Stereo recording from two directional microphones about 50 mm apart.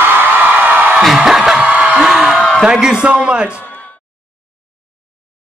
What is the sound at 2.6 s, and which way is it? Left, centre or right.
Speech, centre.